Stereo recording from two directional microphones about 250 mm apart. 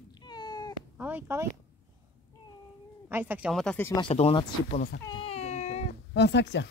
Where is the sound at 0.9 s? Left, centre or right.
Centre.